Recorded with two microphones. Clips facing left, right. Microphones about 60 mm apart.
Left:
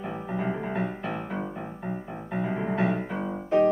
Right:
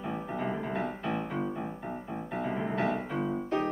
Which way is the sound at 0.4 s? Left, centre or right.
Centre.